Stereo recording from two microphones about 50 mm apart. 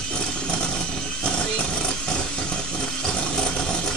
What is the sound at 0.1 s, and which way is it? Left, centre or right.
Vehicle, centre.